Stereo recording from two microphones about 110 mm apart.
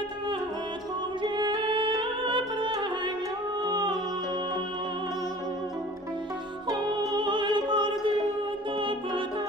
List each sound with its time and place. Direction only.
1.2 s music: 45° right (ahead or behind)
6.7 s music: 40° right (ahead or behind)